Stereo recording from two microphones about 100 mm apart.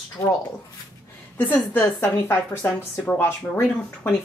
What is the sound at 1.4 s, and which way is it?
A woman's voice, 15° left (ahead or behind).